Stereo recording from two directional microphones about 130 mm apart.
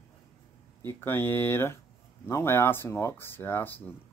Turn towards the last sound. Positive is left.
turn(degrees=15)  # may be behind; listen again after turning